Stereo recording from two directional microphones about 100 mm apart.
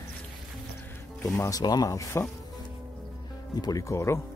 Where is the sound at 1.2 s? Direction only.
35° left (ahead or behind).